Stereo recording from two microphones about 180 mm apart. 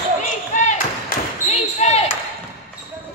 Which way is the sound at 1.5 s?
40° left (ahead or behind).